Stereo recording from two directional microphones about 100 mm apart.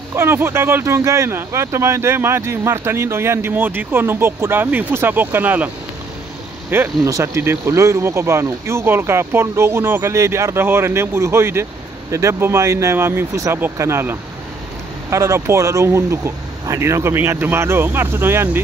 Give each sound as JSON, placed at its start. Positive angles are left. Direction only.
{"t": 0.1, "sound": "speech", "side_deg": -25}
{"t": 6.7, "sound": "speech", "side_deg": -20}